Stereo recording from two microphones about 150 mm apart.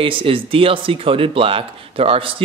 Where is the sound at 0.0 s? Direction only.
35° right (ahead or behind).